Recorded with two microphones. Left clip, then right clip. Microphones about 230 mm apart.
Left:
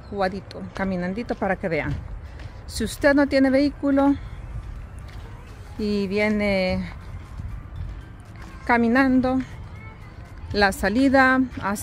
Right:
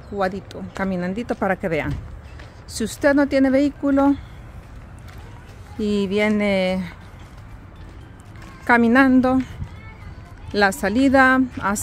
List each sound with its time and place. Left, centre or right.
0.2 s speech: centre
5.8 s speech: centre
8.6 s speech: centre
10.5 s speech: centre